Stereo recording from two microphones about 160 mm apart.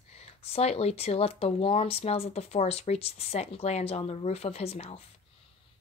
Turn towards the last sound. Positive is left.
turn(degrees=40)  # may be behind; listen again after turning